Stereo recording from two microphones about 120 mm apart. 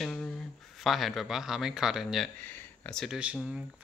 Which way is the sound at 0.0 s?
10° left (ahead or behind).